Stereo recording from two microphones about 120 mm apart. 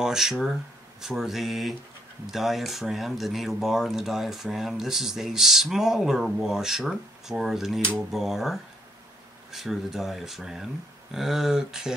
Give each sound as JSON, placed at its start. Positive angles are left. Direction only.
{"t": 0.0, "sound": "speech", "side_deg": -5}